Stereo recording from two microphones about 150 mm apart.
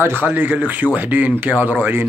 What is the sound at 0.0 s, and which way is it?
Speech, 15° right (ahead or behind).